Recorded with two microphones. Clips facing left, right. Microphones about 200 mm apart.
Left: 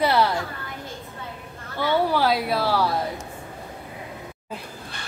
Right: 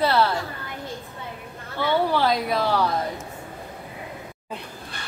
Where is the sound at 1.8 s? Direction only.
10° left (ahead or behind).